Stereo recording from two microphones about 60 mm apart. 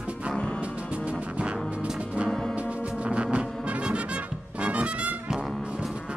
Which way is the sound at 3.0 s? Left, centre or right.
Centre.